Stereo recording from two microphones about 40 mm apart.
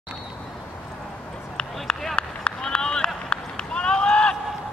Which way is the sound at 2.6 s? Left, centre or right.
Centre.